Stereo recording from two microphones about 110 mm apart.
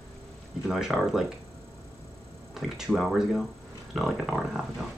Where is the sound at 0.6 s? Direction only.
5° right (ahead or behind).